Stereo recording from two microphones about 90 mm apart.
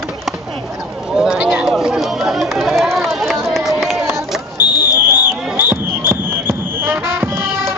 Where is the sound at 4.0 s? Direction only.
25° right (ahead or behind).